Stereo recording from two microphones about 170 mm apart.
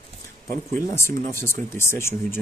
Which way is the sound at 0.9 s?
15° left (ahead or behind).